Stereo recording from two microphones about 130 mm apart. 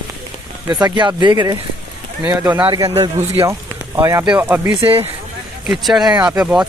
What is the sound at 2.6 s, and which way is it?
Speech, 30° right (ahead or behind).